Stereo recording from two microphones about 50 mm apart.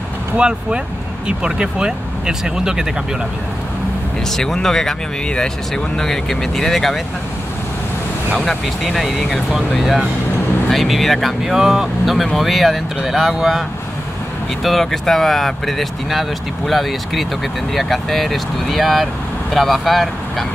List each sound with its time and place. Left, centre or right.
0.4 s speech: centre
4.4 s speech: centre
5.9 s speech: centre
8.4 s speech: centre
11.5 s speech: centre